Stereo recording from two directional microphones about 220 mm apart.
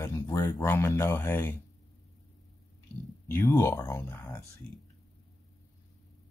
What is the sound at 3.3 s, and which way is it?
Speech, 10° left (ahead or behind).